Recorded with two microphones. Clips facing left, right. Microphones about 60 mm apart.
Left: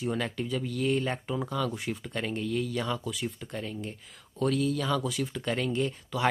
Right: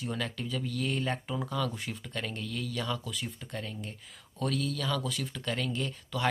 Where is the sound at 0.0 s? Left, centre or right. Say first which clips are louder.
Left 4 dB; centre.